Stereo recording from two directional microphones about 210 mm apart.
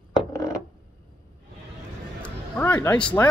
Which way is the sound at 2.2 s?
10° left (ahead or behind).